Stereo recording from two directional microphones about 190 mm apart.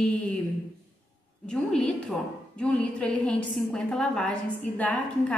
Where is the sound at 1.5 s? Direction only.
5° left (ahead or behind).